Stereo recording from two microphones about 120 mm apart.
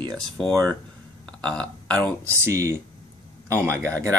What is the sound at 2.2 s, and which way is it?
Speech, 25° right (ahead or behind).